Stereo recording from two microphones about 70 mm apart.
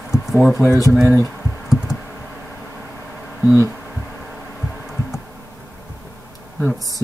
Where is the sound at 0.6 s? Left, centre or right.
Left.